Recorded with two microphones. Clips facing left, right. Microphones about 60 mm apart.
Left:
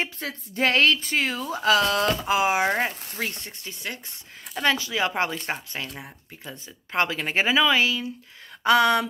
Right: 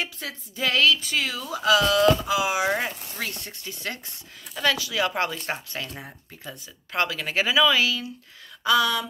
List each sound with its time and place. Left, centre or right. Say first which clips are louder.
0.0 s speech: left 2 dB; left
2.7 s speech: left 1 dB; left
8.6 s speech: left 3 dB; left